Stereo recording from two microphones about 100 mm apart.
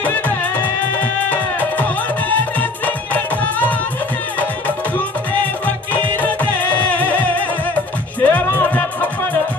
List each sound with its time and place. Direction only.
0.0 s music: 20° left (ahead or behind)